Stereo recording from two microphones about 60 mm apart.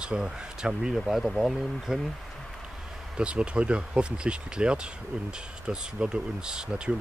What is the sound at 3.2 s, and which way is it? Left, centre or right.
Speech, centre.